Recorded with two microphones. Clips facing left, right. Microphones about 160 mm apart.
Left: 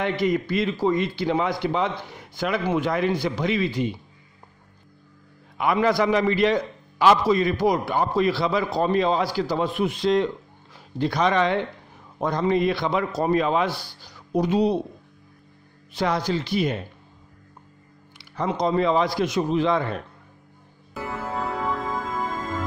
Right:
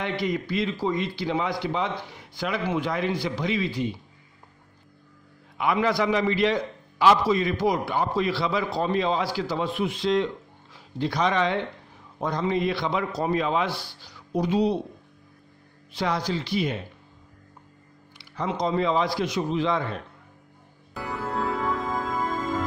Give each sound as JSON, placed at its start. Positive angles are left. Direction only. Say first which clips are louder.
{"t": 0.2, "sound": "speech", "louder": "left 3 dB", "side_deg": 50}
{"t": 5.6, "sound": "speech", "louder": "left 3 dB", "side_deg": 45}
{"t": 15.9, "sound": "speech", "louder": "left 3 dB", "side_deg": 50}
{"t": 18.3, "sound": "speech", "louder": "left 3 dB", "side_deg": 45}
{"t": 20.9, "sound": "music", "louder": "even", "side_deg": 0}